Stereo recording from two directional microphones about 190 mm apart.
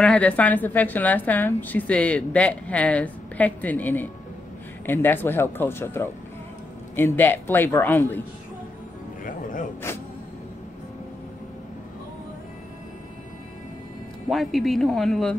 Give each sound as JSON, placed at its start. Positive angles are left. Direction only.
{"t": 0.0, "sound": "a woman's voice", "side_deg": 5}
{"t": 9.2, "sound": "music", "side_deg": 45}
{"t": 14.3, "sound": "speech", "side_deg": 0}